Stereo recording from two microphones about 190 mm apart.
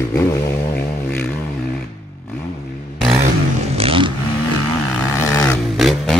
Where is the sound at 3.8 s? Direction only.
30° right (ahead or behind).